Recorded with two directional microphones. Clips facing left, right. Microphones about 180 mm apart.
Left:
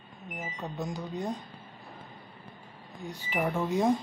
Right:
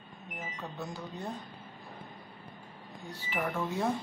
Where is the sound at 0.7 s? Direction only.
15° left (ahead or behind).